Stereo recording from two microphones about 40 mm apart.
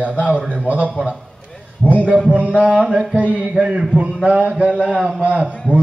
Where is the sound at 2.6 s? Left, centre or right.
Right.